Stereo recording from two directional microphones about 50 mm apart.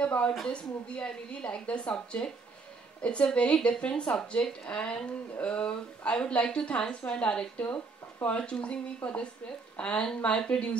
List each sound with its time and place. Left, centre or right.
0.0 s a woman's voice: left